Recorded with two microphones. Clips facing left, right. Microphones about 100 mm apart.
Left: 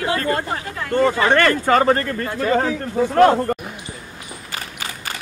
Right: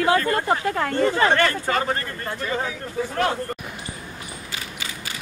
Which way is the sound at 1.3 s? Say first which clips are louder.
Left 5 dB; 65° left (ahead or behind).